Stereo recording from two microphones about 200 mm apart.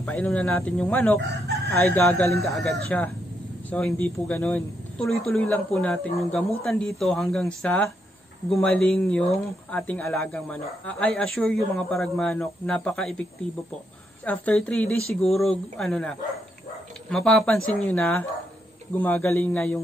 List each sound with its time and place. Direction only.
0.0 s speech: 5° left (ahead or behind)
14.2 s speech: 5° left (ahead or behind)